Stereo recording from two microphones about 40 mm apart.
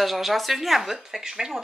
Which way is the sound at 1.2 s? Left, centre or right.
Centre.